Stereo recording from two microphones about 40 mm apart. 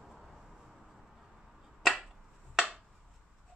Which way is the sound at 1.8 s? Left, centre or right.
Centre.